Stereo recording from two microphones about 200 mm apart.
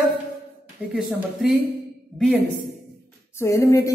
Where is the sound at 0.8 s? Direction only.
10° right (ahead or behind).